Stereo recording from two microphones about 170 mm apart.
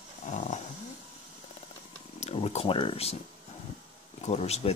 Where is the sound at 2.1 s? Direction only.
40° left (ahead or behind).